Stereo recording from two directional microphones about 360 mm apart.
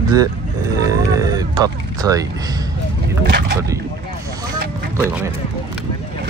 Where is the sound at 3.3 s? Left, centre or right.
Right.